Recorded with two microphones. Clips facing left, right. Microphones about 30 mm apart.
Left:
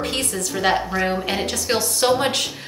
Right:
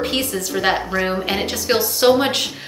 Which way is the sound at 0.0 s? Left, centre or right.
Centre.